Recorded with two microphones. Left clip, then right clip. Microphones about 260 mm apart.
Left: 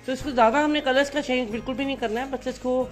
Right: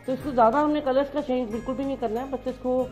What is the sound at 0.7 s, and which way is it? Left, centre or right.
Speech, centre.